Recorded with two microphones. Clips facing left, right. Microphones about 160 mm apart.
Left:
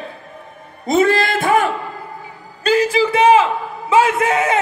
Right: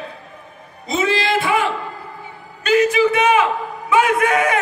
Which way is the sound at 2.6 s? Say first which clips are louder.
Even; 35° left (ahead or behind).